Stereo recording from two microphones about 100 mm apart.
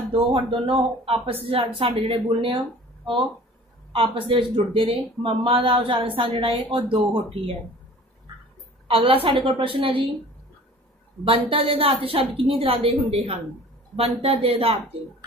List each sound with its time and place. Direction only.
0.1 s a woman's voice: 55° right (ahead or behind)
3.9 s a man's voice: 60° right (ahead or behind)
8.8 s speech: 65° right (ahead or behind)
11.2 s a woman's voice: 70° right (ahead or behind)